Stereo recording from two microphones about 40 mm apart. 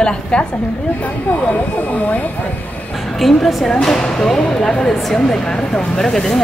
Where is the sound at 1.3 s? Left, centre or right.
Left.